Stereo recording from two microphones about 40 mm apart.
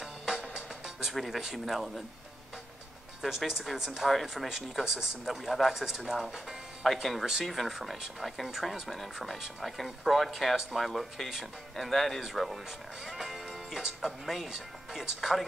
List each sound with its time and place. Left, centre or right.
0.0 s music: centre
1.1 s speech: centre
3.2 s speech: centre
10.9 s speech: centre